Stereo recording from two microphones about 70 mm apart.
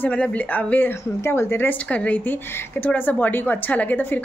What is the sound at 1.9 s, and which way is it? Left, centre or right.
A woman's voice, left.